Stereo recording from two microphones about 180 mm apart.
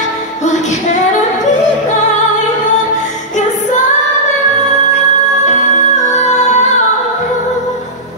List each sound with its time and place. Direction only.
6.1 s music: 40° left (ahead or behind)